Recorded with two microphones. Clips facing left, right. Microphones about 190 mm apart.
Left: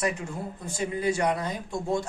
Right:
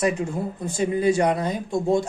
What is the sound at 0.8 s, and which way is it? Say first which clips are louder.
Speech: right 6 dB; 25° right (ahead or behind).